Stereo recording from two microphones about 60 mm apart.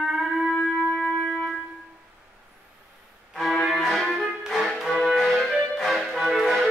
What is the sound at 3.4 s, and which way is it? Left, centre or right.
Music, centre.